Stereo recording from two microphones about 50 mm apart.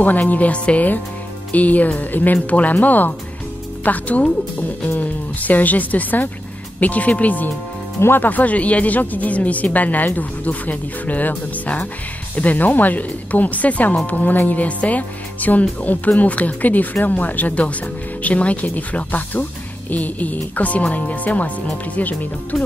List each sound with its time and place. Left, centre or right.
0.0 s speech: left